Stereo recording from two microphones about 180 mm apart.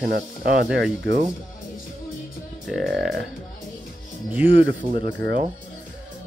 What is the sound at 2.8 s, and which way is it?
Speech, 60° right (ahead or behind).